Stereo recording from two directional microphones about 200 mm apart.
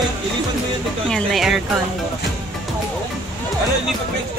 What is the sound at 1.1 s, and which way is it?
Speech, centre (ahead or behind).